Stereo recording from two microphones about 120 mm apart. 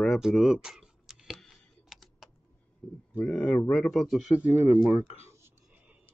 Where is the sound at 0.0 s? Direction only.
Centre (ahead or behind).